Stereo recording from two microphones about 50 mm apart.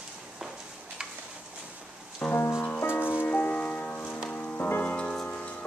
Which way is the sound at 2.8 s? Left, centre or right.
Left.